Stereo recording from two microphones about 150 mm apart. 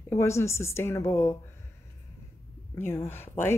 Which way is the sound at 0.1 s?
20° left (ahead or behind).